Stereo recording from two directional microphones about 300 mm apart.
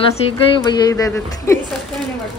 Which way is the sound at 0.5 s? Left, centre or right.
Centre.